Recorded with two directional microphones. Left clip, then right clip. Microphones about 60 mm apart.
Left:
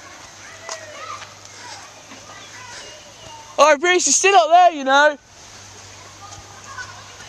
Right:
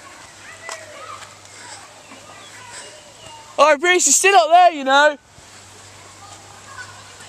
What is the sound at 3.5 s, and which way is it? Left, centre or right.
Speech, centre.